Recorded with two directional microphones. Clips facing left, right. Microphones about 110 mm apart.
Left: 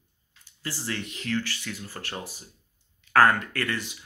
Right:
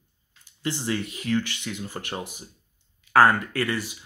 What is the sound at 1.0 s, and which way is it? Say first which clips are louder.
Speech: right 4 dB; 10° right (ahead or behind).